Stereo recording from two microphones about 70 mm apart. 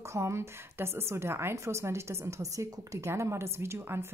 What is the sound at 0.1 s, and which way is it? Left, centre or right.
A woman's voice, right.